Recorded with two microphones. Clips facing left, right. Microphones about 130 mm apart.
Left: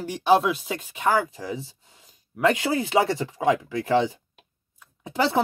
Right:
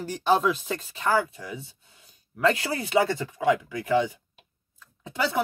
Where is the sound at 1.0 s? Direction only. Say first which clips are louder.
Left 2 dB; 20° left (ahead or behind).